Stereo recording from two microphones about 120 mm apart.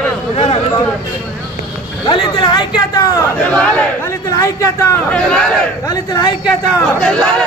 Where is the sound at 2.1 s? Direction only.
40° left (ahead or behind).